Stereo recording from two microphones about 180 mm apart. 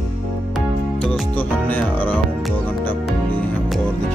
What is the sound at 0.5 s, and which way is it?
Music, centre (ahead or behind).